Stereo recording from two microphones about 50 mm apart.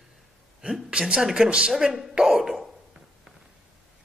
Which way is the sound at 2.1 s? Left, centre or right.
Right.